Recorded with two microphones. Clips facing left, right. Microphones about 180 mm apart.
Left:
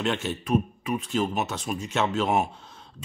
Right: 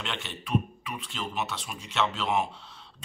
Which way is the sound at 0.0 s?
45° left (ahead or behind).